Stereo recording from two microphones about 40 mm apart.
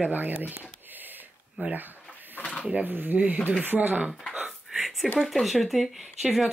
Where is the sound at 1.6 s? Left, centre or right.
Right.